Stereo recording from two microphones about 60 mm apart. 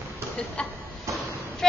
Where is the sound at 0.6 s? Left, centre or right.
Centre.